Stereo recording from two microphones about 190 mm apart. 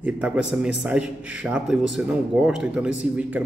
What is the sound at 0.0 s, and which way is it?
A man's voice, 5° right (ahead or behind).